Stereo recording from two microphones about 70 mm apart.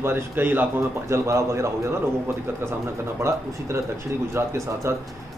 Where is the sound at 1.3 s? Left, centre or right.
Right.